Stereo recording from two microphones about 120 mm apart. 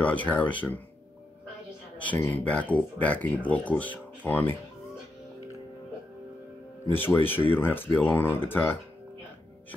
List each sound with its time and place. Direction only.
0.0 s speech: 10° left (ahead or behind)
2.0 s speech: 15° left (ahead or behind)
6.9 s speech: 15° left (ahead or behind)